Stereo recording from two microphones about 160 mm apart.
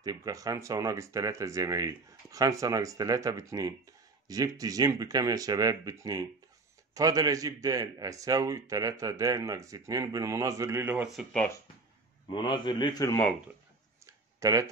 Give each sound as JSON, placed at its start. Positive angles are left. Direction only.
{"t": 0.0, "sound": "speech", "side_deg": -25}
{"t": 11.1, "sound": "speech", "side_deg": 0}
{"t": 12.3, "sound": "a man's voice", "side_deg": 30}
{"t": 14.4, "sound": "speech", "side_deg": -20}